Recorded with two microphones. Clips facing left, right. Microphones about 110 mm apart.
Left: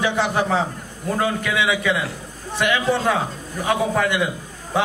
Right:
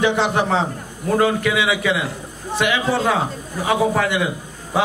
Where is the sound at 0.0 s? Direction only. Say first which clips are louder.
Right 3 dB; 20° right (ahead or behind).